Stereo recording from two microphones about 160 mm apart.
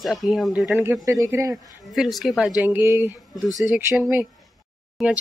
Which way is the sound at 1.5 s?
Centre (ahead or behind).